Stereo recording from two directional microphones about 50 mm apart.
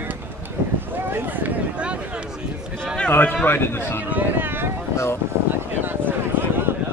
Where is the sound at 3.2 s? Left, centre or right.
Left.